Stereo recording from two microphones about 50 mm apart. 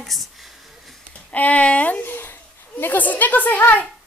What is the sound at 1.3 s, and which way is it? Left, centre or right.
Speech, left.